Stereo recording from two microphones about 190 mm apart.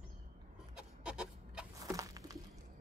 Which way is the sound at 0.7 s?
5° right (ahead or behind).